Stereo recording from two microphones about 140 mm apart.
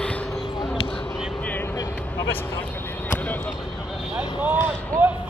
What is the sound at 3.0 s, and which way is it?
Basketball bounce, 10° left (ahead or behind).